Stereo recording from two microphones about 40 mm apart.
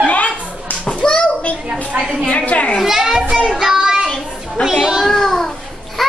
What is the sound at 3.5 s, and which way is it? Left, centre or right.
Child singing, centre.